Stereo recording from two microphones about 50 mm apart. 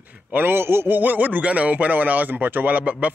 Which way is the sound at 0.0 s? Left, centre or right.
Right.